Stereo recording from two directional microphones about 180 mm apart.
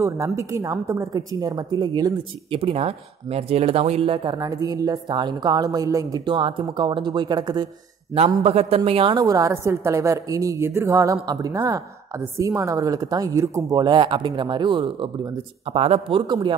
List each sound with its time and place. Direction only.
0.0 s a woman's voice: 15° right (ahead or behind)
8.1 s a woman's voice: 35° right (ahead or behind)